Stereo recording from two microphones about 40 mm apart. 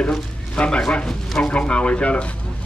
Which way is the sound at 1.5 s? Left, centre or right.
Left.